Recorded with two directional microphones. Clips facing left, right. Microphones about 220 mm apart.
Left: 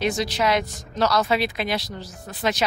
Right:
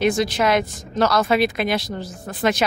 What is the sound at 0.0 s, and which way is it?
Speech, 50° right (ahead or behind).